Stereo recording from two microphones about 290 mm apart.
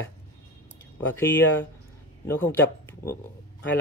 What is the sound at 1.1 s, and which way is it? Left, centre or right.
A man's voice, centre.